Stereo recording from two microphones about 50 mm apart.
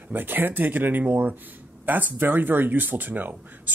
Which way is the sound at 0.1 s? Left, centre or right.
Right.